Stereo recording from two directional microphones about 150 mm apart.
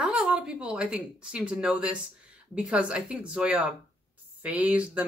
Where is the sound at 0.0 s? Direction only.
5° right (ahead or behind).